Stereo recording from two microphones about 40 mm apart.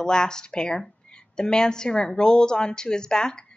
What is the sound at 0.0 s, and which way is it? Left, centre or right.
A woman's voice, centre.